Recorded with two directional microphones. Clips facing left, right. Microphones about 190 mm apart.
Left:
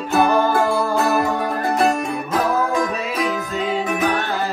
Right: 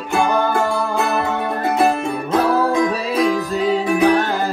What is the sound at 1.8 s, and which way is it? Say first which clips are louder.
Music: right 1 dB; 30° right (ahead or behind).